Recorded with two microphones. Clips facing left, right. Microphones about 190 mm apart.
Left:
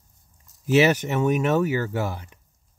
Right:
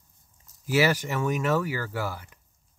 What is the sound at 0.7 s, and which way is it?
Speech, 25° left (ahead or behind).